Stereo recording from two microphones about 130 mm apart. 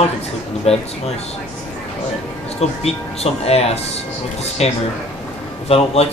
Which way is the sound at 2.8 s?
50° left (ahead or behind).